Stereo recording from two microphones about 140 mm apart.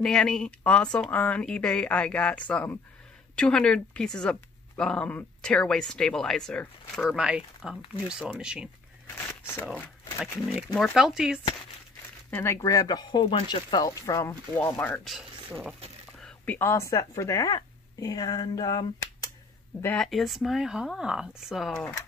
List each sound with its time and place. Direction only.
0.0 s speech: 5° left (ahead or behind)
10.5 s speech: centre (ahead or behind)
12.3 s speech: 15° left (ahead or behind)
15.0 s speech: centre (ahead or behind)
16.2 s a sound: 5° left (ahead or behind)
16.5 s speech: 20° left (ahead or behind)
19.8 s speech: 10° left (ahead or behind)
20.1 s speech: centre (ahead or behind)